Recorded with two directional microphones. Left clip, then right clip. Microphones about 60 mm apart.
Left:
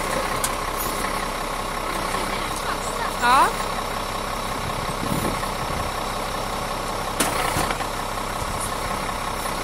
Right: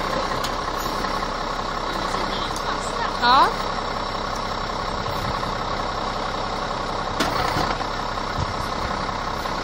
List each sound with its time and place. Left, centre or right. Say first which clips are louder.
3.2 s speech: right 1 dB; right